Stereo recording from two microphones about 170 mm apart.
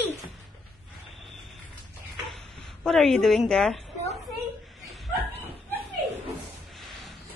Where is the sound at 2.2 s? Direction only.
Centre (ahead or behind).